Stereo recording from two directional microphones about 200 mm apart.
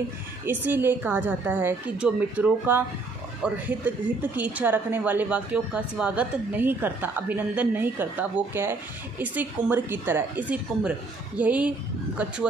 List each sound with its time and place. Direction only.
0.5 s a woman's voice: 10° right (ahead or behind)